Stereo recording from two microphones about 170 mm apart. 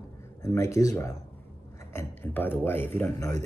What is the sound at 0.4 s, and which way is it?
Speech, 20° left (ahead or behind).